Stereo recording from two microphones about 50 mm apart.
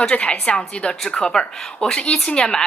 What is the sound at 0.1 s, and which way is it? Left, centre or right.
A woman's voice, left.